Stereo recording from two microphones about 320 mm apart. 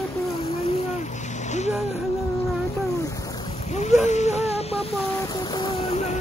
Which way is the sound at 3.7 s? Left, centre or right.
Left.